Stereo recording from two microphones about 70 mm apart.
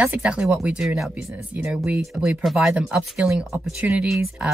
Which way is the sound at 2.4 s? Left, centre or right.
Centre.